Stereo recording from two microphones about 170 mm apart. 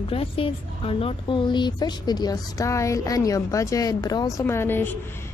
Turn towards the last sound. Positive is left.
turn(degrees=10)  # may be behind; listen again after turning